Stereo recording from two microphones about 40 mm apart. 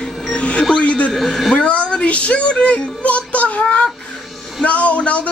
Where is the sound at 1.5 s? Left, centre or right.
Left.